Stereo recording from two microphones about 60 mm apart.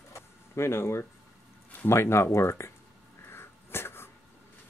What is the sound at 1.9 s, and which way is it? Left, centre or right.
Speech, left.